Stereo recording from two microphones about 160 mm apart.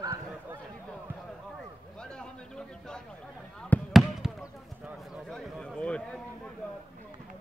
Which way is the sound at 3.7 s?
10° left (ahead or behind).